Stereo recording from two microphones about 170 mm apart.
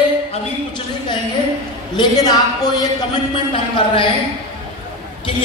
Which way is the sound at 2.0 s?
25° left (ahead or behind).